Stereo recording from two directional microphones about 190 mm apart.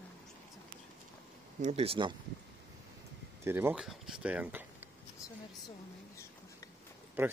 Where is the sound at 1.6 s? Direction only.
30° right (ahead or behind).